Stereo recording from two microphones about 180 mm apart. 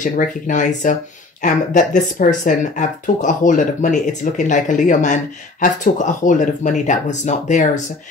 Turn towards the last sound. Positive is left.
turn(degrees=40)  # may be behind; listen again after turning